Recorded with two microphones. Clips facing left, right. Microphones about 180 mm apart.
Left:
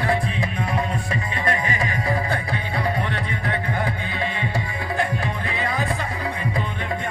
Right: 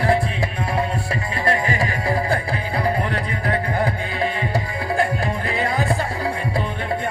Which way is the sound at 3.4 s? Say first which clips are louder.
Right 5 dB; 40° right (ahead or behind).